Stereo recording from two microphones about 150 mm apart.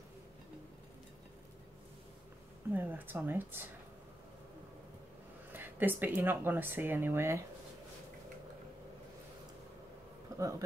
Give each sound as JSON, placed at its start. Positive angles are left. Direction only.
{"t": 2.7, "sound": "speech", "side_deg": -15}
{"t": 5.5, "sound": "speech", "side_deg": -15}
{"t": 10.3, "sound": "a sound", "side_deg": -25}